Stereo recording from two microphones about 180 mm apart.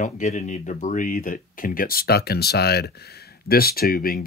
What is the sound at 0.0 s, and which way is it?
Speech, 40° left (ahead or behind).